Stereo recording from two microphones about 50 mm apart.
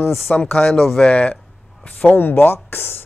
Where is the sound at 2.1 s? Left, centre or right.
Left.